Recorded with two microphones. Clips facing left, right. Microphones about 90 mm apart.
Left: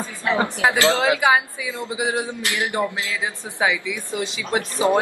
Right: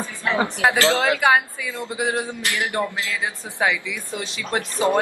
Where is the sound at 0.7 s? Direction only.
15° left (ahead or behind).